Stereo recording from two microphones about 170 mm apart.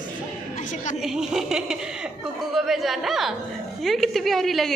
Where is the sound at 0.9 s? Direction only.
5° right (ahead or behind).